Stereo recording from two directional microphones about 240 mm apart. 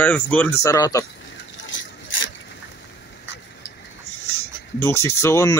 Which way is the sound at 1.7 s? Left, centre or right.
Left.